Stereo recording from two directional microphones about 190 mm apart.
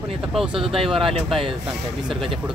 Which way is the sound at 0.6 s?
30° right (ahead or behind).